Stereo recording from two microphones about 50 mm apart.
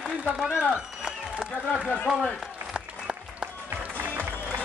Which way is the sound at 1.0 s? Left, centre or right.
Centre.